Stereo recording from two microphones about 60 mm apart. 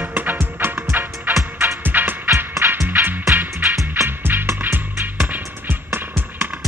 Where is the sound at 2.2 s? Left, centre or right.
Right.